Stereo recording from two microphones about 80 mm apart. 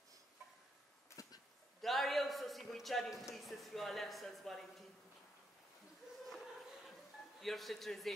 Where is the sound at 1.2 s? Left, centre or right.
Left.